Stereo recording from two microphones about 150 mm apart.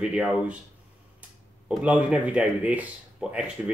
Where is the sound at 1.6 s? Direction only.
5° right (ahead or behind).